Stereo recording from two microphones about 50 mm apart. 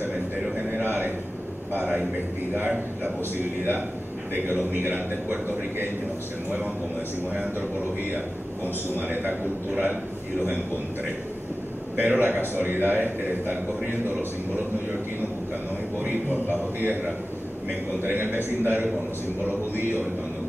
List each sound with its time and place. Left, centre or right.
0.7 s a sound: right
3.0 s a man's voice: right
8.9 s a man's voice: right
12.0 s a man's voice: right
16.0 s a man's voice: right